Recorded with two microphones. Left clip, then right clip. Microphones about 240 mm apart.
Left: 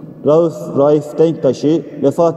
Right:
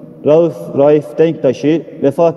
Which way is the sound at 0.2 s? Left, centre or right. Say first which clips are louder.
Right 2 dB; right.